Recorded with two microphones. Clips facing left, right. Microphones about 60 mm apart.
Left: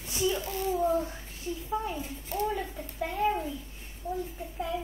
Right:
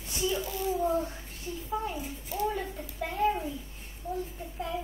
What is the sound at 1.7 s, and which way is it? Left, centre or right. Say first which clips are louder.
Speech: even; centre.